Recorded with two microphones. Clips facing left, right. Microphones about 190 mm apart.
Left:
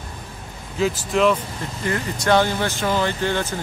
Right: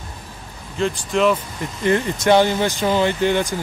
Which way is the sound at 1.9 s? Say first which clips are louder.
Right 4 dB; 20° right (ahead or behind).